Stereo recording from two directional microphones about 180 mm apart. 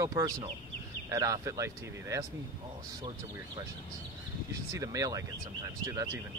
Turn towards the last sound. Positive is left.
turn(degrees=-20)  # may be behind; listen again after turning